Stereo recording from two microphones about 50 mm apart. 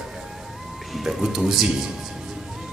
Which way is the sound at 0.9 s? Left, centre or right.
Centre.